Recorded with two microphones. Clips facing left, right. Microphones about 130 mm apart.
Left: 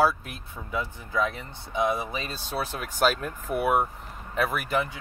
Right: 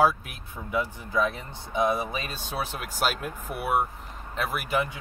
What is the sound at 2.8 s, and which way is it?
Speech, 5° right (ahead or behind).